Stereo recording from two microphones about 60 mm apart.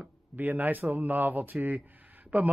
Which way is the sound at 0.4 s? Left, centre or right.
Right.